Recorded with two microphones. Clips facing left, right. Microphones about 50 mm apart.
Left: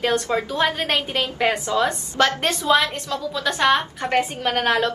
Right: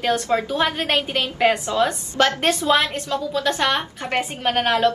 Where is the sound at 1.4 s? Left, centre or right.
Right.